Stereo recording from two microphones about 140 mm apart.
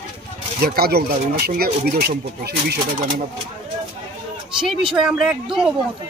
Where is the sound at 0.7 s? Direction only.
90° right.